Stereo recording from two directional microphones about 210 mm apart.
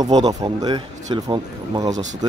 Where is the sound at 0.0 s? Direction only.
20° right (ahead or behind).